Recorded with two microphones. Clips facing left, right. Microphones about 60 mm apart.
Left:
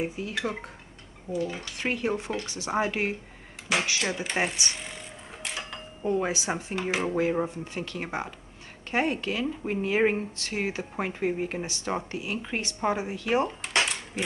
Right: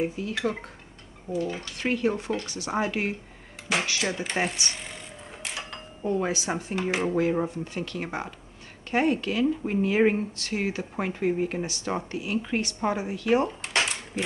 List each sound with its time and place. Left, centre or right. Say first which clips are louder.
0.0 s speech: right 3 dB; centre
1.3 s speech: right 1 dB; centre
1.8 s speech: right 2 dB; centre
4.4 s speech: even; centre
5.4 s a sound: even; centre
6.0 s speech: even; centre
6.7 s speech: right 2 dB; centre
7.4 s speech: right 2 dB; left
13.5 s dishes: even; centre